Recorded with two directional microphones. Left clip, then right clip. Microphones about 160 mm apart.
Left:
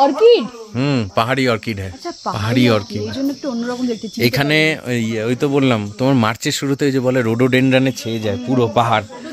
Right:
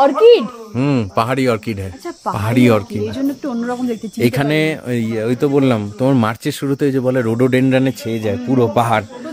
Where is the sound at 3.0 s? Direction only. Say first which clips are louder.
Right 1 dB; 90° left.